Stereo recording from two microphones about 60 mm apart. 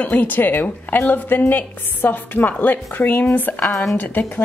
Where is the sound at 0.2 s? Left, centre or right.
Left.